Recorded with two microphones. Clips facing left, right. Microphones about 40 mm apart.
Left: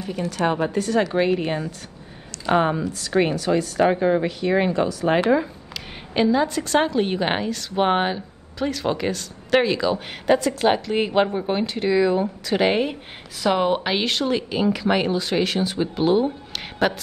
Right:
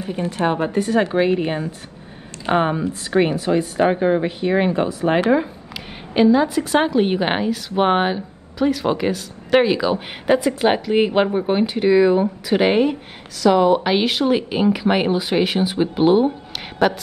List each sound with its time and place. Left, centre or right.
0.0 s a woman's voice: right
2.5 s a woman's voice: centre
2.8 s a woman's voice: right
6.1 s a woman's voice: centre
13.4 s speech: centre
13.8 s a woman's voice: centre
16.8 s a woman's voice: centre